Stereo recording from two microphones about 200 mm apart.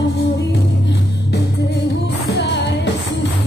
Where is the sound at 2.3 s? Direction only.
60° left (ahead or behind).